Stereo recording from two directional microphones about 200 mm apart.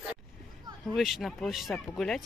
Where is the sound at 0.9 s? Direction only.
Centre (ahead or behind).